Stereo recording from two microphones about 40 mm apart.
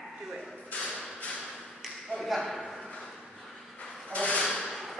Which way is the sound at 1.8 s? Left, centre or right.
Centre.